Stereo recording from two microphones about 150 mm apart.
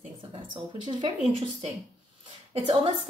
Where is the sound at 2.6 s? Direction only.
35° right (ahead or behind).